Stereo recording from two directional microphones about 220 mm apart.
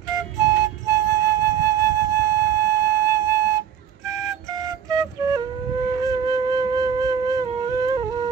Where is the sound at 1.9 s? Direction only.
15° right (ahead or behind).